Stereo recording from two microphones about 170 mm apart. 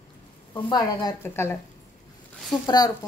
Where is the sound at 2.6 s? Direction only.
25° left (ahead or behind).